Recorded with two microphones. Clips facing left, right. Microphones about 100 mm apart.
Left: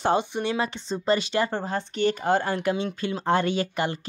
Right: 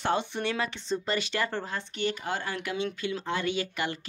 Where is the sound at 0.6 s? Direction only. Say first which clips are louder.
Left 3 dB; 25° left (ahead or behind).